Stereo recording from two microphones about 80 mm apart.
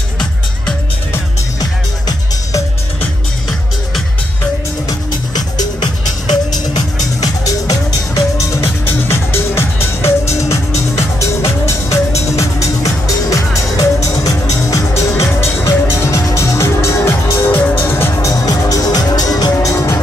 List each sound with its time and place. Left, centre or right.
1.6 s music: left
4.8 s music: left